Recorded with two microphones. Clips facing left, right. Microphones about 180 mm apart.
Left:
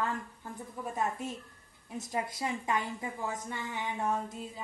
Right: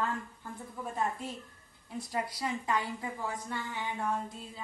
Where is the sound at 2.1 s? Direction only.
20° left (ahead or behind).